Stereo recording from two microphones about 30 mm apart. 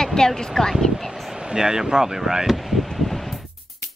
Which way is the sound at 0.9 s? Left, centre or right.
Centre.